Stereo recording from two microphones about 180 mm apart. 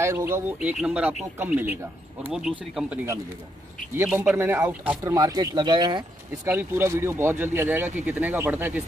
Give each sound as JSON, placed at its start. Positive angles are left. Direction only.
{"t": 0.0, "sound": "speech", "side_deg": -15}
{"t": 6.4, "sound": "speech", "side_deg": -15}